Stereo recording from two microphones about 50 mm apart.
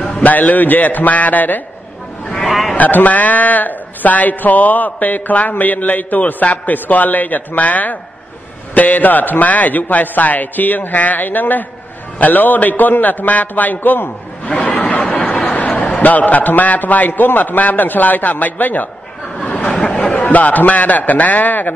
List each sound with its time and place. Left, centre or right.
0.0 s a man's voice: left
2.2 s sheep: centre
2.7 s a man's voice: left
14.6 s a sound: left
15.2 s a man's voice: left
19.4 s a sound: left
20.1 s a man's voice: left